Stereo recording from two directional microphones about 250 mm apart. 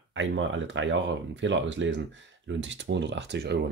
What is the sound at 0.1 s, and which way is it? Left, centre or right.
Speech, right.